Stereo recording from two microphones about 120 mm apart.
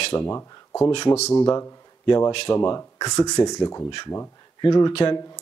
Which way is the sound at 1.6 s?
25° left (ahead or behind).